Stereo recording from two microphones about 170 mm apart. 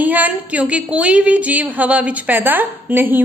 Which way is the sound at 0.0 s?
10° right (ahead or behind).